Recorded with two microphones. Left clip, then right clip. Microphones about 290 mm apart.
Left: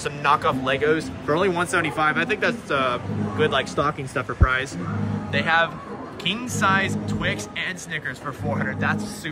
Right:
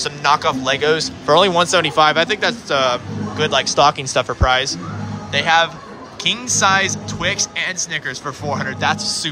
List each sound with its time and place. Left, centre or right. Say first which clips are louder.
0.0 s speech: right 4 dB; centre